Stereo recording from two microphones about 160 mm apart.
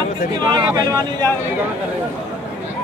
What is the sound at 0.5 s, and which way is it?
Speech, 25° right (ahead or behind).